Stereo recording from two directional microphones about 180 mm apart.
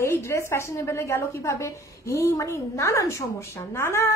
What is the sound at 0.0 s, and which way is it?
A woman's voice, 15° left (ahead or behind).